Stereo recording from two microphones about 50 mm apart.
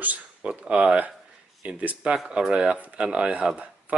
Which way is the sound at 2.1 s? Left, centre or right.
Centre.